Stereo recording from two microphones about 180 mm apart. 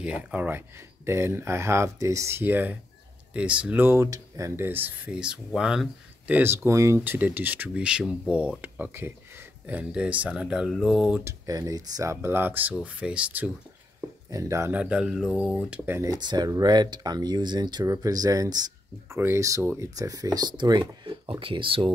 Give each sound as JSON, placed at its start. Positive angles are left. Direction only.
{"t": 0.0, "sound": "speech", "side_deg": -5}